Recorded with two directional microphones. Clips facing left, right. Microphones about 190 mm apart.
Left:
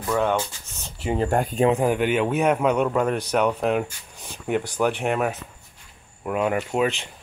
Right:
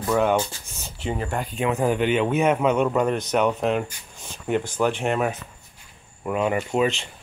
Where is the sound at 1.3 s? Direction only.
45° left (ahead or behind).